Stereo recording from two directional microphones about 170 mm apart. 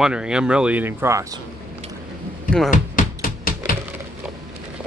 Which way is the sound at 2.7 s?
55° left (ahead or behind).